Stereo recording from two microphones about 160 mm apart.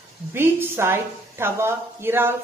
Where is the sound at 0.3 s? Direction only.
15° right (ahead or behind).